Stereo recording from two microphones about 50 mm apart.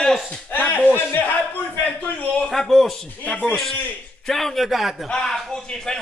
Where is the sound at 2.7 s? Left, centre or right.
Centre.